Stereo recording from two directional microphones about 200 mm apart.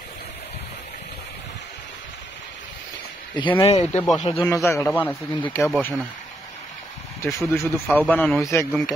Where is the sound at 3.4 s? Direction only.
25° left (ahead or behind).